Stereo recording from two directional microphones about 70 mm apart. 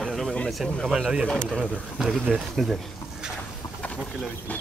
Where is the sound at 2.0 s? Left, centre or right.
Centre.